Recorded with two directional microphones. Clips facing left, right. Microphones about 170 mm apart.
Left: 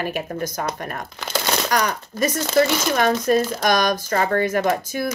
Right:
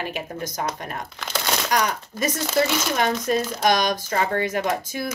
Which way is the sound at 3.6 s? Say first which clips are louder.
Left 1 dB; 20° right (ahead or behind).